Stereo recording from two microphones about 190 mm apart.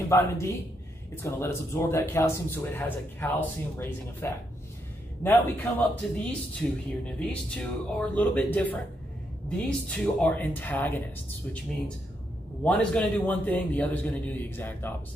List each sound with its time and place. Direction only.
0.1 s speech: 15° left (ahead or behind)
12.6 s speech: 5° left (ahead or behind)